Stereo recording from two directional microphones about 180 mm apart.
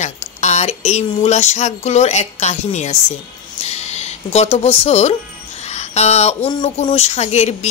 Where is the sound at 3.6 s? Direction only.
35° left (ahead or behind).